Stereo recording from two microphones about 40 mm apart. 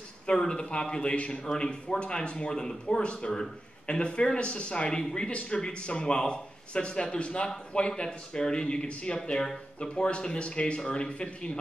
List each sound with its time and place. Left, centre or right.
0.4 s a man's voice: centre
1.4 s a man's voice: centre
2.5 s a man's voice: centre